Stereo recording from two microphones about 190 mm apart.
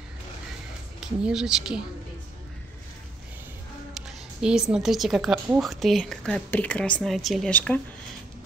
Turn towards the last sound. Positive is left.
turn(degrees=5)  # may be behind; listen again after turning